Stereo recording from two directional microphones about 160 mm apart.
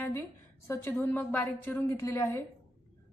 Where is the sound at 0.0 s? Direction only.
15° left (ahead or behind).